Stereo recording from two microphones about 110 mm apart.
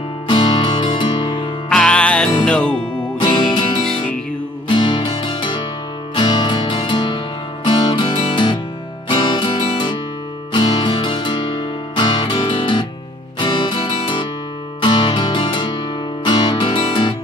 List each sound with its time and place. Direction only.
0.3 s music: 45° left (ahead or behind)
1.7 s music: 5° left (ahead or behind)
3.2 s music: 40° left (ahead or behind)